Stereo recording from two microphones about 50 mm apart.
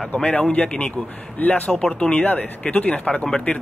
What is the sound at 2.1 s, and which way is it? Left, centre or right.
Speech, left.